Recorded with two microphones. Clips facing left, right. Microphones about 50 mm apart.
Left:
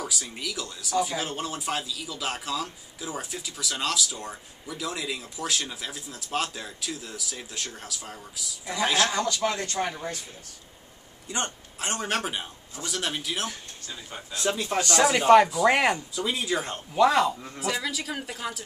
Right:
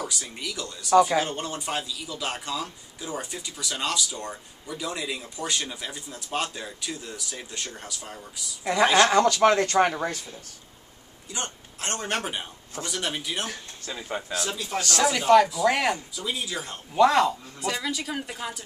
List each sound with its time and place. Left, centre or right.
0.0 s speech: centre
0.9 s speech: right
1.2 s speech: centre
9.1 s speech: right
9.8 s speech: right
11.8 s speech: centre
13.5 s speech: right
14.4 s speech: left
14.8 s speech: left
16.2 s speech: left
16.9 s speech: centre